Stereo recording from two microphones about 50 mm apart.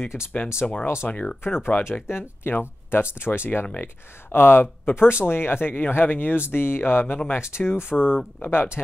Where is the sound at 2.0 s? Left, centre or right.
Left.